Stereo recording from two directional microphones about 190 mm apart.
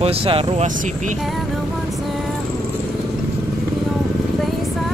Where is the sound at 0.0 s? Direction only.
30° right (ahead or behind).